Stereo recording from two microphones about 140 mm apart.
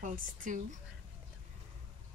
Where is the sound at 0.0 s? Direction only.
70° right (ahead or behind).